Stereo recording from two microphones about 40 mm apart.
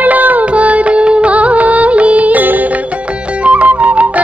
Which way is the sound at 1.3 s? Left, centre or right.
Right.